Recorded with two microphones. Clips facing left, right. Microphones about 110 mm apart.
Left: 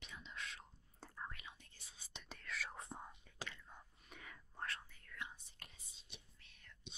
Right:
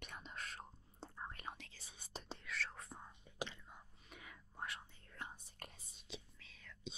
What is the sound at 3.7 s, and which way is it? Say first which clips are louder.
Whispering: even; 5° right (ahead or behind).